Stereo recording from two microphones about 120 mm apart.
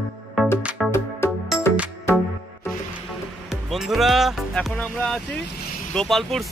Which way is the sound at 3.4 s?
Centre (ahead or behind).